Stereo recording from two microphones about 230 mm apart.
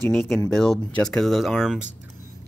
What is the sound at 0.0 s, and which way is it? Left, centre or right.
Speech, centre.